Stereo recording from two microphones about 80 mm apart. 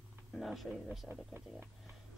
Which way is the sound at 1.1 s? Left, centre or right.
Right.